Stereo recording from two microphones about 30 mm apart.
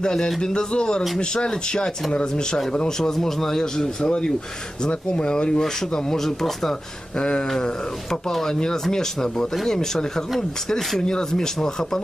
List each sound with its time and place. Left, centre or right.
0.0 s speech: left
3.0 s speech: centre
4.0 s speech: left; by 6.7 s centre
7.2 s speech: left
7.4 s speech: left